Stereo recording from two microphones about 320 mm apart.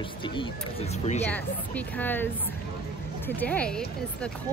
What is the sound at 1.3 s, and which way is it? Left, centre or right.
Speech, centre.